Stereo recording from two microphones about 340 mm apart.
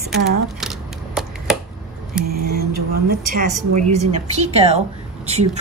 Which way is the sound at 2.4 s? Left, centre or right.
Right.